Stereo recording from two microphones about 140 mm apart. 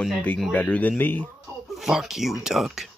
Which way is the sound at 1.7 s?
Centre (ahead or behind).